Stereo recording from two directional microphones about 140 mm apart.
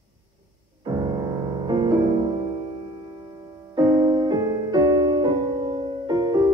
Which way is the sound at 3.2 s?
30° right (ahead or behind).